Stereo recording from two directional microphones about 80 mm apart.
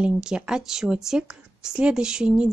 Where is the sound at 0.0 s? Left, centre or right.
Centre.